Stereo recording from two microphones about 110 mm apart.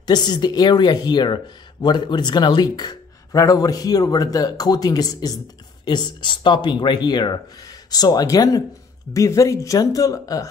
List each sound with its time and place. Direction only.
0.0 s speech: 40° left (ahead or behind)